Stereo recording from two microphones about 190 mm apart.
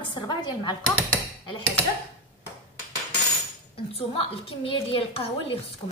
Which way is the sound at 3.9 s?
30° left (ahead or behind).